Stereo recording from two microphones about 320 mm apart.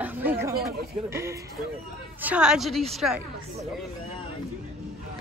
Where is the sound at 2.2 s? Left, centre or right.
Centre.